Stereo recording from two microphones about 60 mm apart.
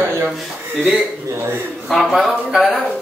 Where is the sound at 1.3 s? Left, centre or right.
Right.